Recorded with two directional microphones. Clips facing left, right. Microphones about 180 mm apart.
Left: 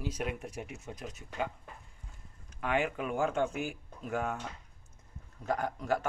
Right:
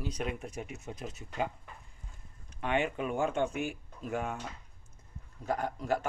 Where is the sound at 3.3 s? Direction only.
20° right (ahead or behind).